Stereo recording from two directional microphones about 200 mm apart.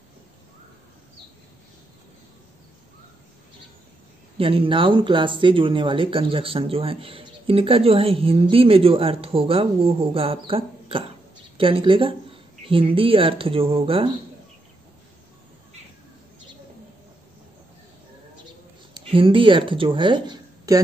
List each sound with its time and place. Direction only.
4.4 s a woman's voice: 25° right (ahead or behind)
18.9 s speech: 25° right (ahead or behind)